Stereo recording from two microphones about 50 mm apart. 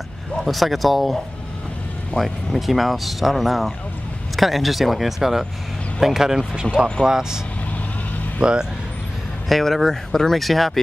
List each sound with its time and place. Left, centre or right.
0.4 s speech: centre
2.1 s speech: centre
9.5 s speech: centre